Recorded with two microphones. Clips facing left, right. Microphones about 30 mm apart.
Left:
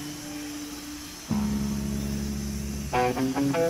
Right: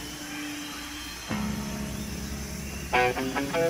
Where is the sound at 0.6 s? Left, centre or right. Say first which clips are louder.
Right 1 dB; right.